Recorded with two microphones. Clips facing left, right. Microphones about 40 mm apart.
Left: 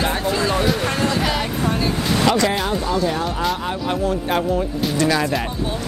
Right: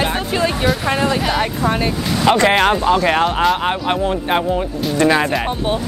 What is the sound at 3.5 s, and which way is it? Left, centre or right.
Speech, right.